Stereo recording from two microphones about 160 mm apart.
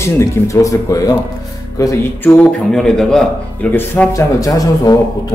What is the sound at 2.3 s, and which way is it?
Speech, 5° left (ahead or behind).